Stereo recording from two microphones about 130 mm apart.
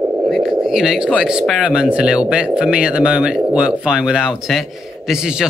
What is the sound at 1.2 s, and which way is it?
Speech, 5° right (ahead or behind).